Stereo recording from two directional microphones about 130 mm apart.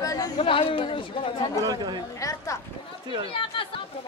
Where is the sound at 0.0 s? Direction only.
25° left (ahead or behind).